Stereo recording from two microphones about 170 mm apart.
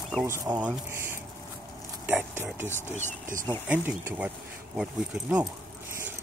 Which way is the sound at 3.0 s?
50° right (ahead or behind).